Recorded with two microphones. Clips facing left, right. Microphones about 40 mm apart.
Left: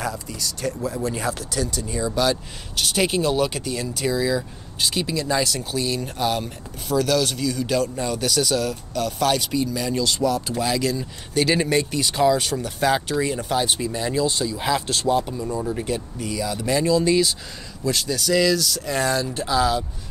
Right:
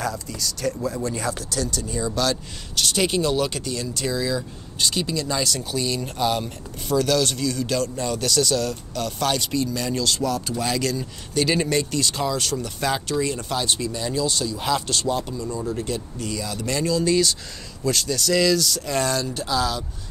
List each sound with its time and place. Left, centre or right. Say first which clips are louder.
0.0 s speech: even; centre
19.4 s speech: left 5 dB; left